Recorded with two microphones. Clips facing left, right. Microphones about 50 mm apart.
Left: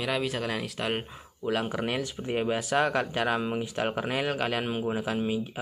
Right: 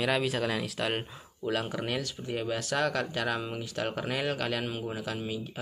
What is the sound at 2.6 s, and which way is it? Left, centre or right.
Speech, centre.